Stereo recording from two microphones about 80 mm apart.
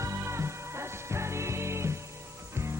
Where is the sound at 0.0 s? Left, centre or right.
Right.